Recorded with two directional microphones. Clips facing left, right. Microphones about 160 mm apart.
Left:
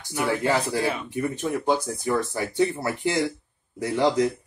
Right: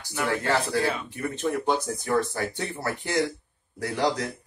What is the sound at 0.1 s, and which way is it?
Speech, 15° left (ahead or behind).